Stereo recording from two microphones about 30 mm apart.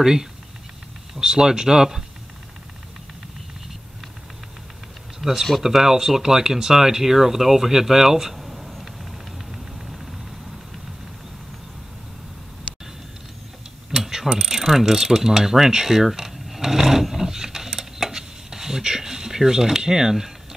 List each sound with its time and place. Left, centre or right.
0.0 s speech: centre
5.2 s speech: centre
9.5 s a sound: centre
13.9 s mechanisms: centre